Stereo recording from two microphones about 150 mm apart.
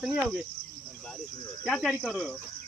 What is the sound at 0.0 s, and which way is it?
Speech, 5° right (ahead or behind).